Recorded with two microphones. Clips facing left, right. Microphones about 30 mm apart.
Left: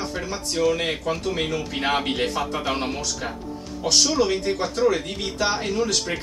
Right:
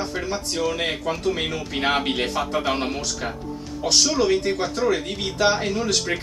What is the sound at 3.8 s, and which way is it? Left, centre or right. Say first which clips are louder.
Speech: even; right.